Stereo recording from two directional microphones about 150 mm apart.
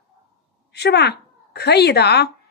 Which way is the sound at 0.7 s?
90° left.